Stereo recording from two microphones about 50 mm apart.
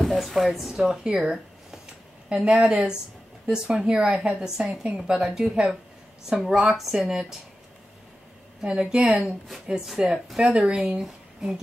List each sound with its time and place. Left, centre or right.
0.0 s a woman's voice: centre
1.1 s speech: right
8.6 s speech: centre